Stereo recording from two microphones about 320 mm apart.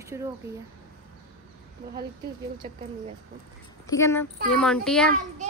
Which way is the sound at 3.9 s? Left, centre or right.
Centre.